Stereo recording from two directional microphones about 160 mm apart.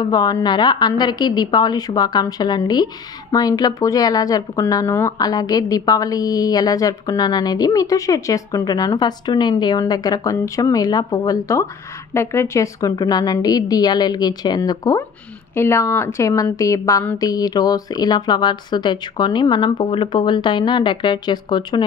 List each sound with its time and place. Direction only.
0.0 s a woman's voice: 25° left (ahead or behind)